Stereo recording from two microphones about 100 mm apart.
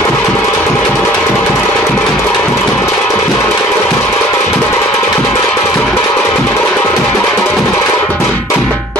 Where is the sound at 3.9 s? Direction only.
20° left (ahead or behind).